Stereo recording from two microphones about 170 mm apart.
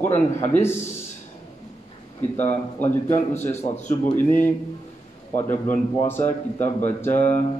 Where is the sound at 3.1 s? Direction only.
40° left (ahead or behind).